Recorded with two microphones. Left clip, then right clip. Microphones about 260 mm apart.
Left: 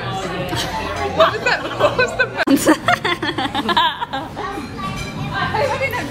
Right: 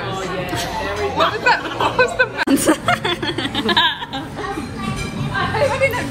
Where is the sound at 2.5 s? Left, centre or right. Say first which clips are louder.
Left 2 dB; left.